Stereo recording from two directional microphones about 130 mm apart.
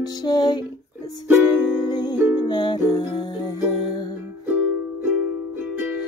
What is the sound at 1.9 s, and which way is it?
Music, 35° left (ahead or behind).